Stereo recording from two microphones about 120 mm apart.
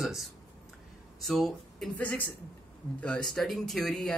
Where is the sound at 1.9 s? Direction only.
10° left (ahead or behind).